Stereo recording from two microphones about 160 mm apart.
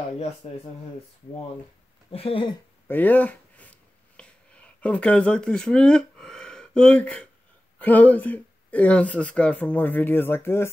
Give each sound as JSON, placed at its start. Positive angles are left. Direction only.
{"t": 0.4, "sound": "speech", "side_deg": 40}
{"t": 2.1, "sound": "speech", "side_deg": 35}
{"t": 2.9, "sound": "speech", "side_deg": 10}
{"t": 4.2, "sound": "a sound", "side_deg": 5}
{"t": 7.8, "sound": "speech", "side_deg": 10}